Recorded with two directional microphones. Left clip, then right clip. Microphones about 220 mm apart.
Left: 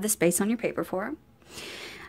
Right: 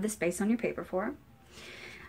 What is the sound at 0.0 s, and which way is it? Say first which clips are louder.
A woman's voice: left 6 dB; 45° left (ahead or behind).